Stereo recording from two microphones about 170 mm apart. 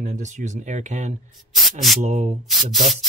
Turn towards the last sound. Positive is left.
turn(degrees=0)  # may be behind; listen again after turning